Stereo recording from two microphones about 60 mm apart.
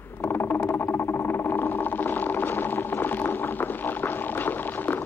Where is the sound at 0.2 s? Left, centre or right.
Left.